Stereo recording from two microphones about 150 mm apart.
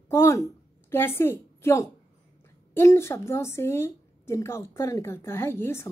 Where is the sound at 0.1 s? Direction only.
20° left (ahead or behind).